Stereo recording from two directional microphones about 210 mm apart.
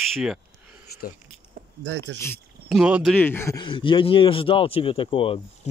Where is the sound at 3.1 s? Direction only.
10° left (ahead or behind); by 5.3 s 25° left (ahead or behind).